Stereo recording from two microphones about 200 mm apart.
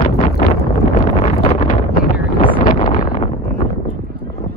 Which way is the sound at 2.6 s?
40° left (ahead or behind).